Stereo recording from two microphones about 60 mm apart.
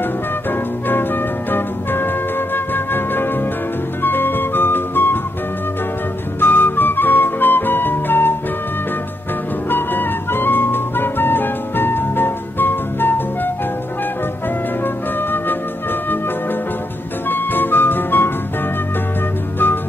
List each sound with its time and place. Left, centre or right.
0.5 s music: left
6.4 s flute: left
9.7 s music: left
15.1 s music: left
17.3 s music: left